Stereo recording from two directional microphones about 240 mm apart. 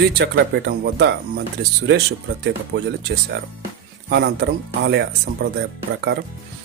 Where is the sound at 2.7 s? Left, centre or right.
Right.